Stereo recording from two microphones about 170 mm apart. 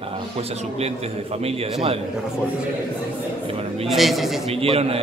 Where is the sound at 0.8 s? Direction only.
35° right (ahead or behind).